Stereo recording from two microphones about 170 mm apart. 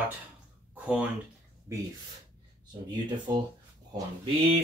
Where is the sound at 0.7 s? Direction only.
10° right (ahead or behind).